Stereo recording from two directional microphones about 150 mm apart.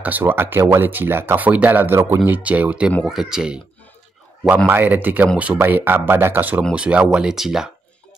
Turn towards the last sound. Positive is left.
turn(degrees=-5)  # may be behind; listen again after turning